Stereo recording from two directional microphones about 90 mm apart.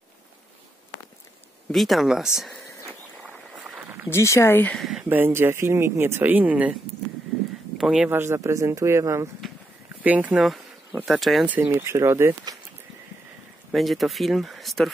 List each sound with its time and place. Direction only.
1.7 s speech: centre (ahead or behind)
3.5 s a sound: 10° right (ahead or behind)
4.1 s speech: 30° left (ahead or behind)
4.7 s a sound: centre (ahead or behind)
5.1 s speech: 25° right (ahead or behind); by 8.1 s 5° right (ahead or behind)
8.1 s speech: 25° right (ahead or behind)
10.0 s speech: 15° right (ahead or behind)
11.1 s speech: centre (ahead or behind)
11.6 s speech: 30° right (ahead or behind)
13.7 s speech: centre (ahead or behind)